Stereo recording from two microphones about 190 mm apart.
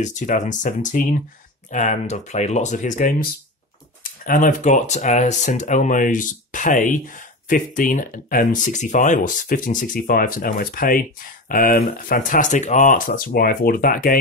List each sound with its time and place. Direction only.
0.0 s speech: 40° left (ahead or behind)